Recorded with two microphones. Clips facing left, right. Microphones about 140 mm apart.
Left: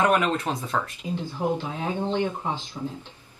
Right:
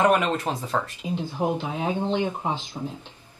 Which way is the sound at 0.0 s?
15° right (ahead or behind).